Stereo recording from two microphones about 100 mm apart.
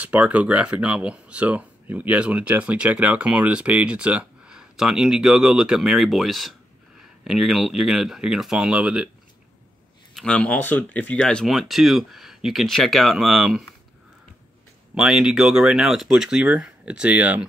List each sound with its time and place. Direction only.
0.0 s speech: 15° right (ahead or behind)
10.1 s speech: 10° left (ahead or behind)
15.0 s speech: 5° right (ahead or behind)